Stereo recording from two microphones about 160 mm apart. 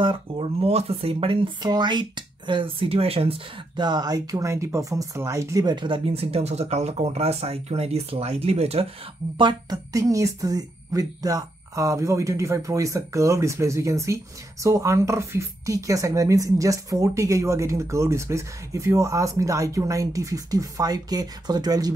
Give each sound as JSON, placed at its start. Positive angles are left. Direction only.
{"t": 0.0, "sound": "speech", "side_deg": -35}
{"t": 9.4, "sound": "a woman's voice", "side_deg": -25}